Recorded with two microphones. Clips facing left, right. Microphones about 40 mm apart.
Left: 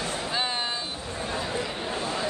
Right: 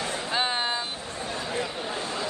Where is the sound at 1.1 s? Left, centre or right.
Centre.